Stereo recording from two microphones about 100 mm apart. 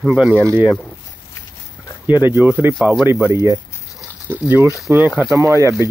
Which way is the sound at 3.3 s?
30° right (ahead or behind).